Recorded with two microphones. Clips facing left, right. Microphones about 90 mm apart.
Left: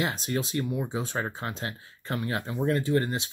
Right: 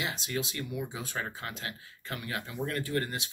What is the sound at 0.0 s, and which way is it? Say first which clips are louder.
Speech: left 5 dB; 40° left (ahead or behind).